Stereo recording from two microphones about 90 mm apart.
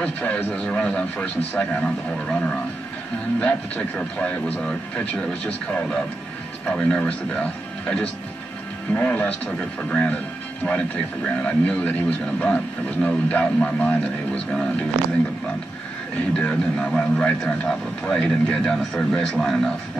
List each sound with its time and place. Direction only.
0.0 s a man's voice: 15° left (ahead or behind)
11.2 s a man's voice: 15° left (ahead or behind)
16.3 s a man's voice: 10° left (ahead or behind)